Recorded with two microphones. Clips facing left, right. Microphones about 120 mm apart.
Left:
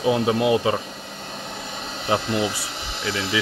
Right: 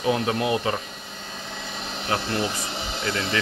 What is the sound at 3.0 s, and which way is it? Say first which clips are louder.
Speech: left 2 dB; centre (ahead or behind).